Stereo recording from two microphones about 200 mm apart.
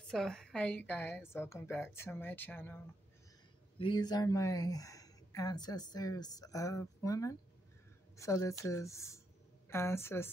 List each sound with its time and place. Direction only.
0.1 s speech: 5° left (ahead or behind)
3.7 s speech: 25° left (ahead or behind)